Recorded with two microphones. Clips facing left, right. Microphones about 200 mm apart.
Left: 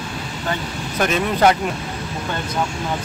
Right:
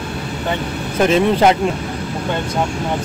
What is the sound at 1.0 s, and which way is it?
Speech, 25° right (ahead or behind).